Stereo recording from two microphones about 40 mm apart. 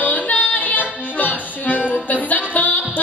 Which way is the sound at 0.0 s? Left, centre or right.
Left.